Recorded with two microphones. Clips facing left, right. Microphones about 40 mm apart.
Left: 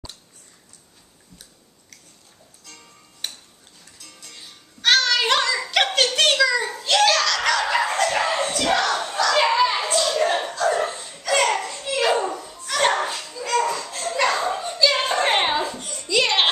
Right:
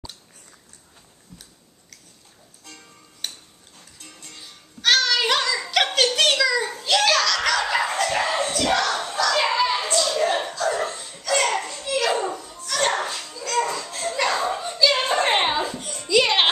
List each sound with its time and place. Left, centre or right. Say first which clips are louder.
3.2 s tick-tock: even; centre
4.0 s music: right 1 dB; right
4.4 s a sound: left 1 dB; centre
11.7 s belly laugh: left 2 dB; centre
12.4 s children playing: left 2 dB; centre
13.7 s a sound: left 1 dB; centre